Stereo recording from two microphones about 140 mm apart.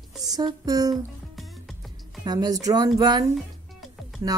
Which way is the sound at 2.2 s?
30° right (ahead or behind).